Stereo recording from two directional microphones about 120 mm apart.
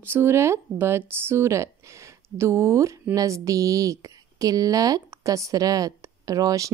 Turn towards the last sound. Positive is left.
turn(degrees=-30)  # may be behind; listen again after turning